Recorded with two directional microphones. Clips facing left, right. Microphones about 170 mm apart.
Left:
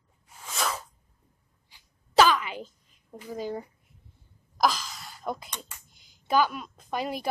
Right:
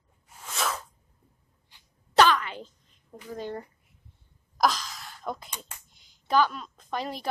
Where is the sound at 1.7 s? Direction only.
5° left (ahead or behind).